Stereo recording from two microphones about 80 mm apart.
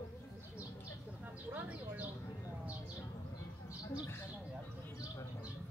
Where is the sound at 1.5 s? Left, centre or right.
Centre.